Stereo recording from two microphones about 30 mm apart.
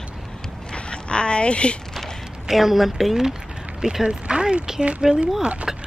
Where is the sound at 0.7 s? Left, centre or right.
Left.